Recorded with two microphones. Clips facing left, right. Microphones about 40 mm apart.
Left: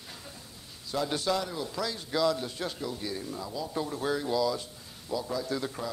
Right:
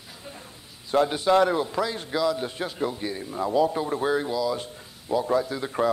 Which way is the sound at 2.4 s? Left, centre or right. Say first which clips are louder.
Right 6 dB; right.